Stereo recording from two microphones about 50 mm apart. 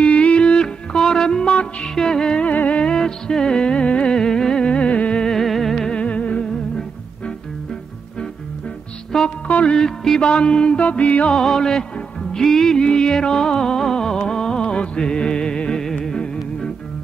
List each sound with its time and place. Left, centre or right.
0.0 s music: left
2.4 s music: left
2.9 s music: centre
5.2 s music: centre
5.9 s music: left
9.1 s music: centre
9.5 s music: left
9.8 s music: centre
10.9 s music: left
11.3 s music: centre